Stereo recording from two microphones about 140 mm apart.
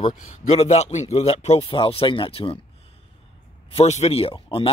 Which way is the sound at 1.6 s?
40° left (ahead or behind).